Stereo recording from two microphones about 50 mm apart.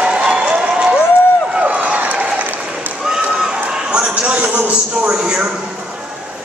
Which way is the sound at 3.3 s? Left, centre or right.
Centre.